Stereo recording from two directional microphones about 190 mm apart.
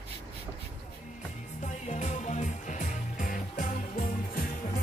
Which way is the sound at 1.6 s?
40° left (ahead or behind).